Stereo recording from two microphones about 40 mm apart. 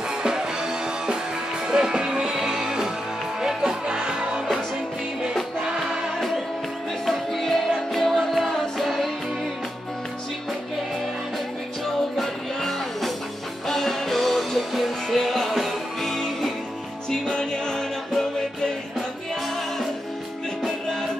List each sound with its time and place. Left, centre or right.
0.2 s music: centre
6.1 s music: centre
12.2 s music: centre
17.1 s music: centre